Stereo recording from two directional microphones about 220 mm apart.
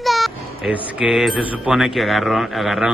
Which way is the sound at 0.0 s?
Centre (ahead or behind).